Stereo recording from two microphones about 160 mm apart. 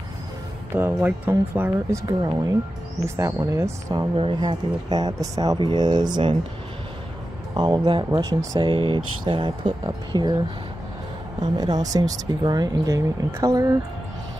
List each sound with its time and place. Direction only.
0.7 s speech: 15° right (ahead or behind)
4.2 s speech: 30° right (ahead or behind)
7.5 s speech: 30° right (ahead or behind)
11.4 s speech: 25° right (ahead or behind)